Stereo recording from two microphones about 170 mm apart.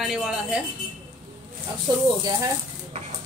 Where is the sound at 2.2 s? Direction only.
20° right (ahead or behind).